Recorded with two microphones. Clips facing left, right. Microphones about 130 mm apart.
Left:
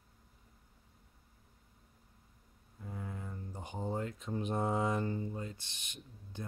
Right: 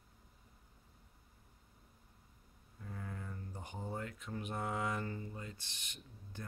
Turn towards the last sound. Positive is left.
turn(degrees=20)  # may be behind; listen again after turning